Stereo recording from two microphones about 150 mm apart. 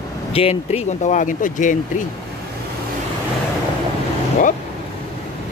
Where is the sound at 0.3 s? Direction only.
40° left (ahead or behind); by 1.8 s 60° left (ahead or behind).